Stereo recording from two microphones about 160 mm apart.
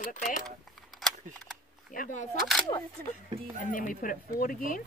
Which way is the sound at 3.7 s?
60° left (ahead or behind).